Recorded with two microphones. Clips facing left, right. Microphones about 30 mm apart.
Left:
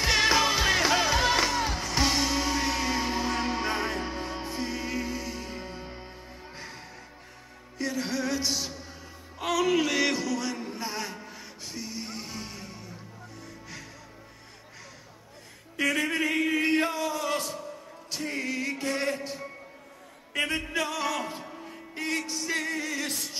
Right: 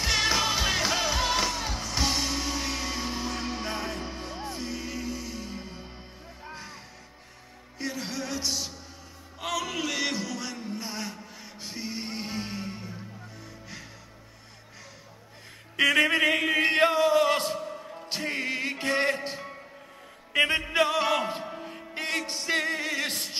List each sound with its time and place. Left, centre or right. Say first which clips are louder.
0.0 s music: left 2 dB; centre
7.7 s music: left 3 dB; centre
11.6 s music: right 2 dB; right
13.4 s music: left 2 dB; centre
15.7 s a sound: right 5 dB; right
20.3 s music: right 5 dB; right
21.9 s music: even; right